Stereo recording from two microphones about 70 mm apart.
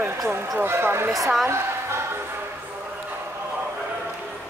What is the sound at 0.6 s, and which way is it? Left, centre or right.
Speech, right.